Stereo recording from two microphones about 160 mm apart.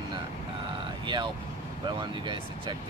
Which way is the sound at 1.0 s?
30° right (ahead or behind).